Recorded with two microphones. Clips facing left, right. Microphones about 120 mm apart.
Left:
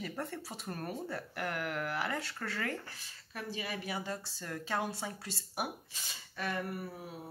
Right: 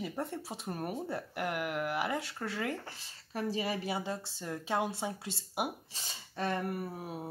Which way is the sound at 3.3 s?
30° right (ahead or behind).